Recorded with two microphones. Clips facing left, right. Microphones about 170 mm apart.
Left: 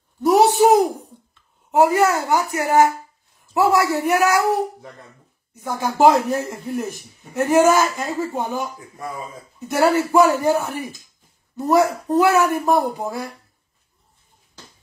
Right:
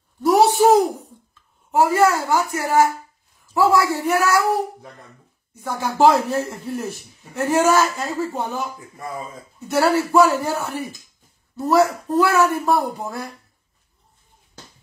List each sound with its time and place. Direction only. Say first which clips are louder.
0.2 s a sound: left 1 dB; 15° left (ahead or behind)
1.7 s speech: left 1 dB; 20° left (ahead or behind)
4.0 s a man's voice: left 1 dB; 15° left (ahead or behind)
5.6 s a man's voice: left 1 dB; 20° left (ahead or behind)
9.7 s a man's voice: left 1 dB; 15° left (ahead or behind)